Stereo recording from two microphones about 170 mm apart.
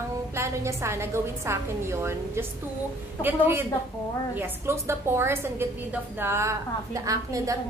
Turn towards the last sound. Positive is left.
turn(degrees=-20)  # may be behind; listen again after turning